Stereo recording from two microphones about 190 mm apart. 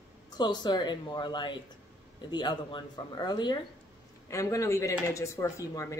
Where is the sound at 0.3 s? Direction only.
20° left (ahead or behind).